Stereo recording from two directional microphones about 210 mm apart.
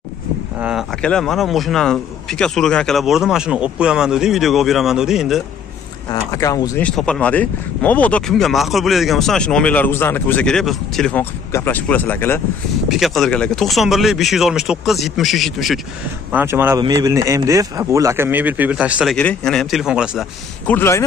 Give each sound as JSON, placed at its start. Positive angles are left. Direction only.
{"t": 0.6, "sound": "speech", "side_deg": -5}
{"t": 6.3, "sound": "speech", "side_deg": 15}
{"t": 6.9, "sound": "speech", "side_deg": 5}
{"t": 20.6, "sound": "speech", "side_deg": 10}